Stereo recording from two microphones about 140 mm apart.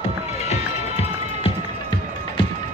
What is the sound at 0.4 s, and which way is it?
Run, 50° left (ahead or behind).